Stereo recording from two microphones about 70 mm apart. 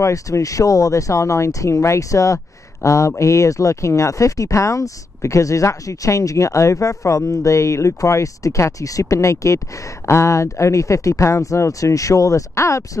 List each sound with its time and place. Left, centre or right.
0.0 s speech: left